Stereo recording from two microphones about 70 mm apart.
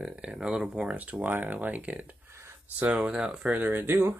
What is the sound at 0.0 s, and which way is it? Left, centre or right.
Speech, centre.